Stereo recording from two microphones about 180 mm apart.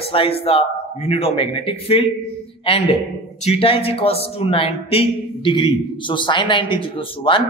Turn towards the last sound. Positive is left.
turn(degrees=30)  # may be behind; listen again after turning